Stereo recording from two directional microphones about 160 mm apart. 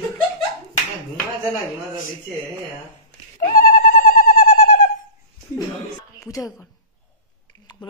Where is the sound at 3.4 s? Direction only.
60° left (ahead or behind).